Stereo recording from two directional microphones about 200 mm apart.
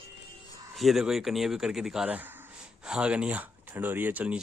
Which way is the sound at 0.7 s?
Centre (ahead or behind).